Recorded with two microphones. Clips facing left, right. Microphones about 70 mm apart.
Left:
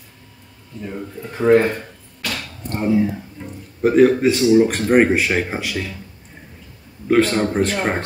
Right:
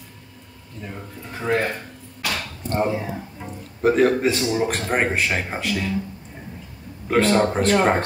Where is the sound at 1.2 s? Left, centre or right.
Left.